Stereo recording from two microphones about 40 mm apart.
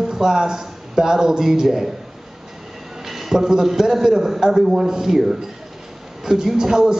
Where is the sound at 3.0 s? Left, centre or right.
Centre.